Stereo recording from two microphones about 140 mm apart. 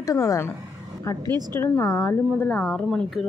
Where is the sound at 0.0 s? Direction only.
25° left (ahead or behind).